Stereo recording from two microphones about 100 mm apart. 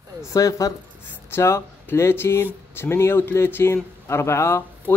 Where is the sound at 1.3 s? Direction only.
25° left (ahead or behind).